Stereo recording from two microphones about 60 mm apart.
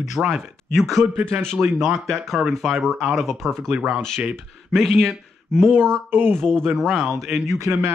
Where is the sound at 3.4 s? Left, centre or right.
Right.